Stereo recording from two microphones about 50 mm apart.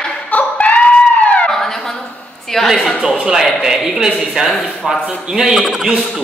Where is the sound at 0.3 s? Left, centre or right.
Left.